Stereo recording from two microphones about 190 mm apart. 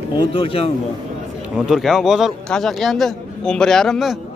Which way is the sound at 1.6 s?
Centre (ahead or behind).